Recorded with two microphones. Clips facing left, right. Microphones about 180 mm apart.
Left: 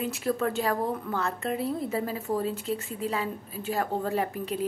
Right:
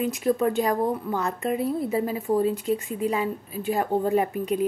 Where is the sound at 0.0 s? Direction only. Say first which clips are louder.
Right 5 dB; 15° right (ahead or behind).